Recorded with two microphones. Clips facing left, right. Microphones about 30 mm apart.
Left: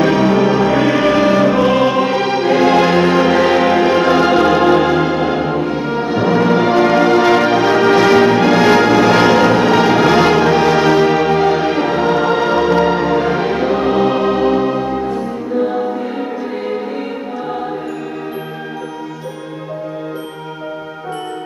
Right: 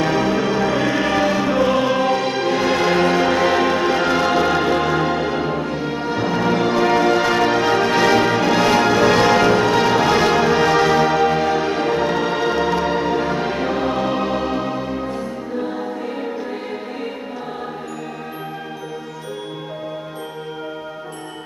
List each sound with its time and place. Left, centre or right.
0.0 s music: left